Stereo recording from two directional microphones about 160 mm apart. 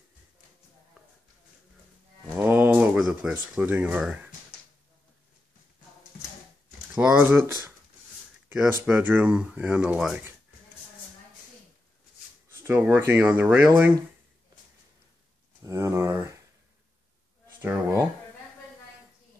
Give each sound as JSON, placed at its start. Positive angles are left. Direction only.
{"t": 2.4, "sound": "speech", "side_deg": -10}
{"t": 7.0, "sound": "speech", "side_deg": -10}
{"t": 8.8, "sound": "speech", "side_deg": -10}
{"t": 12.6, "sound": "speech", "side_deg": -10}
{"t": 15.6, "sound": "a sound", "side_deg": -20}
{"t": 17.6, "sound": "a sound", "side_deg": -15}